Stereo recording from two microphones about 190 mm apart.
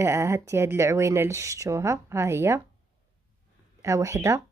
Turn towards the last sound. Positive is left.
turn(degrees=-15)  # may be behind; listen again after turning